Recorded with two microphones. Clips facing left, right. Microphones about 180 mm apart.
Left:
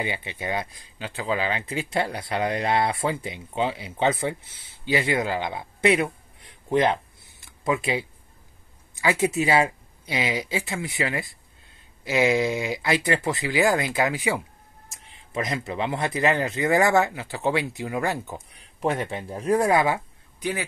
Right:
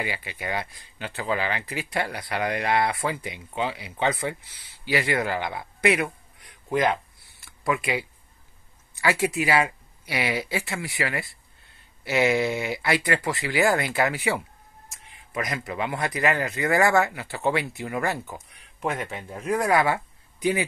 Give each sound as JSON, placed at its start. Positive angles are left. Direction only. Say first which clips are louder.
{"t": 0.0, "sound": "speech", "louder": "left 2 dB", "side_deg": 25}
{"t": 18.5, "sound": "speech", "louder": "left 4 dB", "side_deg": 35}